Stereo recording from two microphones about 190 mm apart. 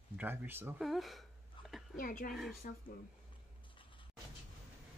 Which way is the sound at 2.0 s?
50° left (ahead or behind).